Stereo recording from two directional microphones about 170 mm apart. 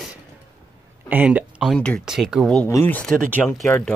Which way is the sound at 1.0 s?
10° right (ahead or behind).